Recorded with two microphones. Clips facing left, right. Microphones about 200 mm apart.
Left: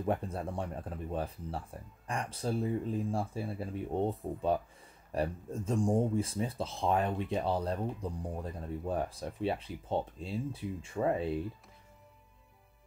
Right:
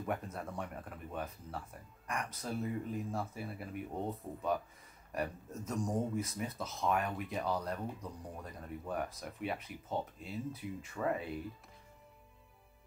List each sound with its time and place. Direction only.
0.0 s speech: 30° left (ahead or behind)